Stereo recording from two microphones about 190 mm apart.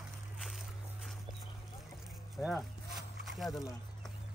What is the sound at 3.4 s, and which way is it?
Speech, 20° left (ahead or behind).